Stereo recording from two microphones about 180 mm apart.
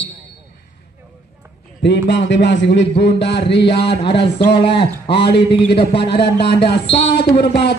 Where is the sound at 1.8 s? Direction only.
75° left (ahead or behind).